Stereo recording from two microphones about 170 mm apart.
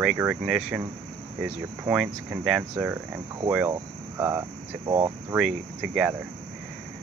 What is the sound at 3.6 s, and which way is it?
Speech, 20° right (ahead or behind).